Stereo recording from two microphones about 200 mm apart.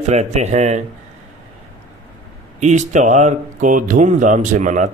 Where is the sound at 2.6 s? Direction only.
35° right (ahead or behind).